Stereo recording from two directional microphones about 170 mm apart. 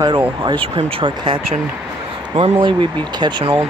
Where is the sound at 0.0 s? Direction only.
25° right (ahead or behind).